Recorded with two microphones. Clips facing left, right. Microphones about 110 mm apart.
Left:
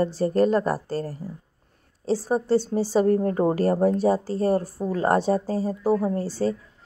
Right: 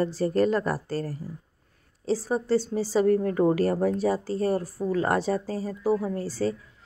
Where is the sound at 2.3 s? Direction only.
25° left (ahead or behind).